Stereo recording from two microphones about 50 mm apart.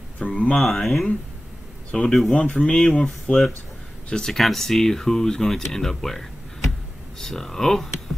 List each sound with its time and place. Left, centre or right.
0.2 s speech: left
0.6 s speech: centre
1.9 s speech: centre
2.6 s speech: centre